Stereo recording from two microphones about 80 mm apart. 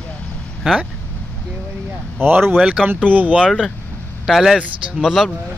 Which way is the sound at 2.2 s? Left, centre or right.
Right.